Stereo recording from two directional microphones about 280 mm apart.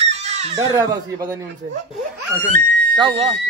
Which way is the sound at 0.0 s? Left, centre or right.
Right.